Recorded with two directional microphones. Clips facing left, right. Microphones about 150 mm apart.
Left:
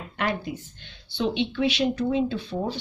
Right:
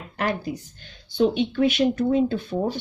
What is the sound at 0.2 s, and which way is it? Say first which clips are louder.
Speech: right 2 dB; 35° right (ahead or behind).